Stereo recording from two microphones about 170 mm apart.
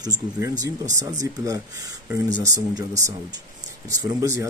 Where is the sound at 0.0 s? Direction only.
20° right (ahead or behind).